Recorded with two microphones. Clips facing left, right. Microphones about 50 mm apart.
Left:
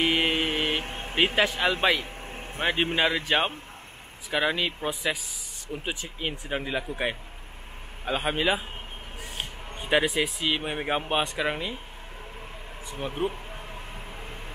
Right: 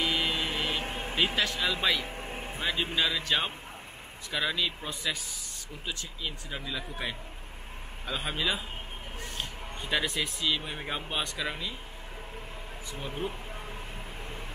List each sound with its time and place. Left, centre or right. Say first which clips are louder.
0.0 s vehicle: left 5 dB; left
0.8 s vehicle: right 1 dB; centre
1.1 s speech: left 6 dB; left
2.0 s vehicle: right 1 dB; centre
2.6 s speech: left 5 dB; left
4.3 s speech: left 5 dB; left
4.8 s speech: left 6 dB; centre
6.2 s speech: left 7 dB; left
10.0 s speech: left 6 dB; centre
10.4 s speech: left 4 dB; left
12.9 s speech: left 6 dB; left